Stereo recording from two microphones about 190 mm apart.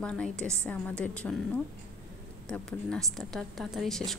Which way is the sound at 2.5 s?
5° left (ahead or behind).